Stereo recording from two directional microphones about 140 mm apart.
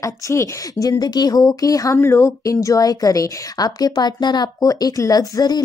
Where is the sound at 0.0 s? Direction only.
20° left (ahead or behind).